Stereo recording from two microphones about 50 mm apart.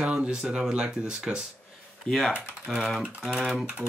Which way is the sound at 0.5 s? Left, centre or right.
Right.